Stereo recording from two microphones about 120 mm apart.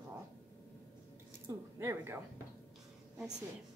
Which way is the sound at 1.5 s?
20° right (ahead or behind).